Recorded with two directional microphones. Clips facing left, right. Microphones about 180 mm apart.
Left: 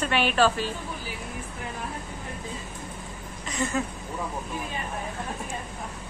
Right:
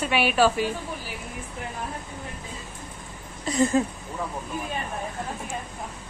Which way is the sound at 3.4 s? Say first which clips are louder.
Right 7 dB; 35° right (ahead or behind).